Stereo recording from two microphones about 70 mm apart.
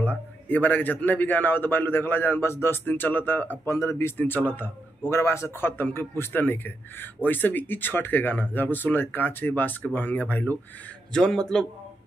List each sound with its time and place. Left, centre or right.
0.0 s a man's voice: left
3.6 s speech: left
4.2 s a man's voice: left
11.1 s a man's voice: centre